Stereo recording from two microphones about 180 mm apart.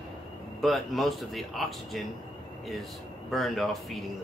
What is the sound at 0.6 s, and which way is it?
Speech, centre (ahead or behind).